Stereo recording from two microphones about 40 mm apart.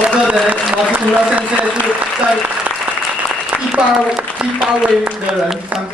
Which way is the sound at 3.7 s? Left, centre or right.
Right.